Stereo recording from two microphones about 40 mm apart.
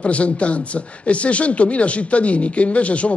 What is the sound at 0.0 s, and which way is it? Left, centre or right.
Speech, left.